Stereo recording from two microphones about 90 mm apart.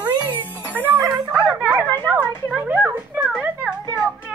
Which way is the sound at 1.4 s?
10° right (ahead or behind).